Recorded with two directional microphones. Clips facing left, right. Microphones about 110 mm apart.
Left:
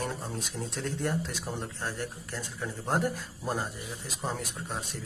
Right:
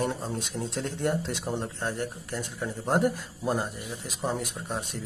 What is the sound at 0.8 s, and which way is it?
Speech, 25° right (ahead or behind).